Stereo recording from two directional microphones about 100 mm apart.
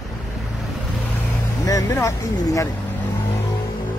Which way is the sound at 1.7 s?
35° left (ahead or behind).